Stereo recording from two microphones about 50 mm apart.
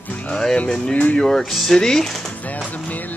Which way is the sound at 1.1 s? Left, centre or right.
Centre.